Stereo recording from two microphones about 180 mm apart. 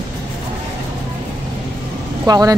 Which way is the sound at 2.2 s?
20° right (ahead or behind).